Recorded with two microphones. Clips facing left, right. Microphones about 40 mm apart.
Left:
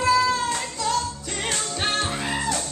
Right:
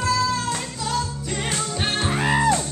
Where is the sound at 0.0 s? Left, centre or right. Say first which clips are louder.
Left 2 dB; centre.